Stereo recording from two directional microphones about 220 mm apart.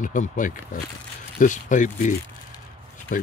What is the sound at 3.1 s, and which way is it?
Speech, 35° left (ahead or behind).